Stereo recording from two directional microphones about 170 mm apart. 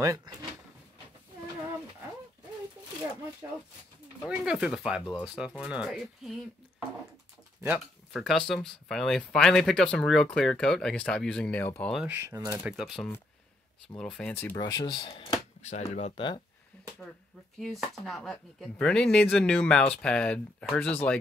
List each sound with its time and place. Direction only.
0.0 s speech: 20° right (ahead or behind)
4.3 s speech: 5° right (ahead or behind)
7.6 s speech: 10° right (ahead or behind)
8.2 s speech: centre (ahead or behind)
11.9 s speech: 5° right (ahead or behind)
12.2 s speech: 15° right (ahead or behind); by 14.6 s 10° left (ahead or behind)
14.6 s speech: 25° left (ahead or behind); by 16.1 s 40° left (ahead or behind)
17.6 s speech: centre (ahead or behind)